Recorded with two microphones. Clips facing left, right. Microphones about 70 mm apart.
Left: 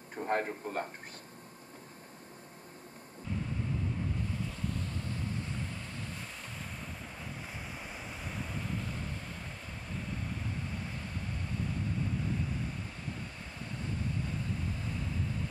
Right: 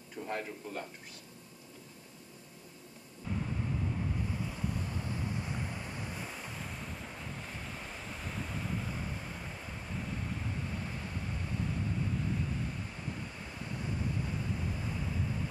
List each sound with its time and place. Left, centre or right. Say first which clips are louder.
0.1 s a man's voice: left 6 dB; left
4.3 s waves: even; centre
14.2 s waves: even; centre